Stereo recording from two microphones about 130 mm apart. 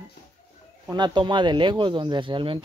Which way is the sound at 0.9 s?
35° right (ahead or behind).